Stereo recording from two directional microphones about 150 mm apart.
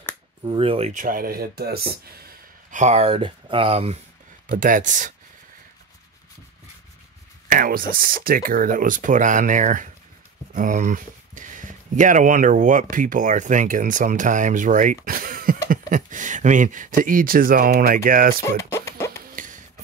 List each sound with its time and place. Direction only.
0.5 s speech: 40° right (ahead or behind)
0.9 s speech: 70° right (ahead or behind); by 2.8 s 90° right
2.8 s speech: 45° right (ahead or behind)
4.5 s speech: 65° right (ahead or behind)
7.4 s speech: 70° right (ahead or behind)
18.6 s a sound: 20° left (ahead or behind)
19.3 s a sound: 60° right (ahead or behind)